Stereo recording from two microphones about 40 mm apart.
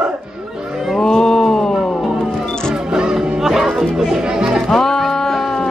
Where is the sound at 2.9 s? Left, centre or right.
Centre.